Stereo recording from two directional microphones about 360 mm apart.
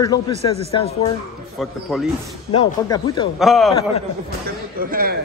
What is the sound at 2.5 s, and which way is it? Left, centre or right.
Speech, centre.